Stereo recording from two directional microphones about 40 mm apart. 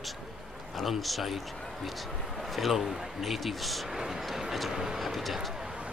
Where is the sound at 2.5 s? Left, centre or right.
Centre.